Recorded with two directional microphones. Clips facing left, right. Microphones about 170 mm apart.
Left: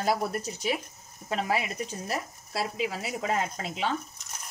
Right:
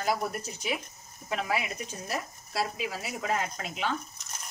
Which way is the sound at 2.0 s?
25° left (ahead or behind).